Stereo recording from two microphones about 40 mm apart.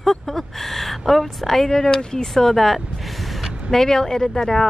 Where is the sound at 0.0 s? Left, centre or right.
Centre.